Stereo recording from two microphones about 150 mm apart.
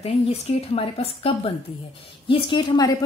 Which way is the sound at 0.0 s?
40° left (ahead or behind).